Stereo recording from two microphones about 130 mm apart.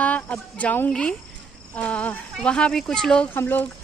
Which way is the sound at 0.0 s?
10° left (ahead or behind).